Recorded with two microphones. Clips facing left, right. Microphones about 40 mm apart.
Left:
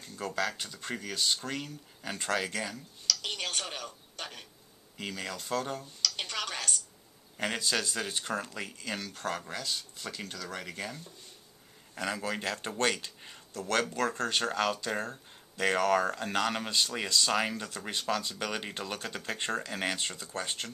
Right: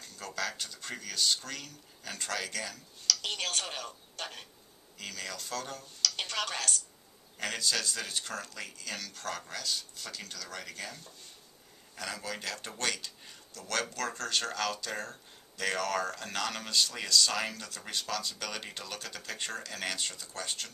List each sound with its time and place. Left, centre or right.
0.0 s speech: left
3.1 s speech: centre
4.9 s speech: left
6.0 s a sound: centre
7.3 s speech: left